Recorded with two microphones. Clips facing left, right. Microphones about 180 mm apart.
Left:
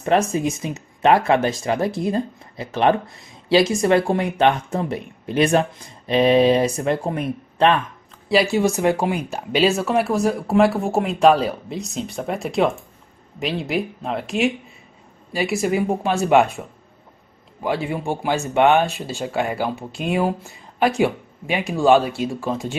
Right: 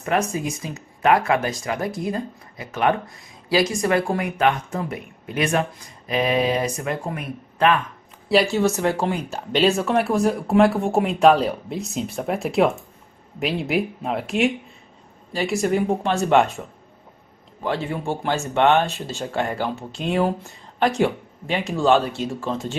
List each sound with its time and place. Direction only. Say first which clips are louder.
0.0 s speech: left 4 dB; 30° left (ahead or behind)
8.3 s speech: left 1 dB; 10° left (ahead or behind)